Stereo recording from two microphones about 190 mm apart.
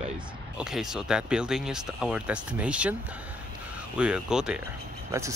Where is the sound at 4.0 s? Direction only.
5° right (ahead or behind).